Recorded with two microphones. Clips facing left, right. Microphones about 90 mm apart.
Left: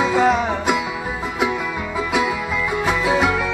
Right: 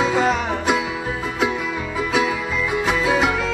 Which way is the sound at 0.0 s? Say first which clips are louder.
Left 2 dB; 15° left (ahead or behind).